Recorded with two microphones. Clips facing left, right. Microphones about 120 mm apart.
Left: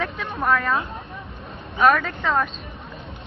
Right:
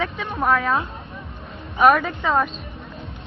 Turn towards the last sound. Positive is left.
turn(degrees=0)  # may be behind; listen again after turning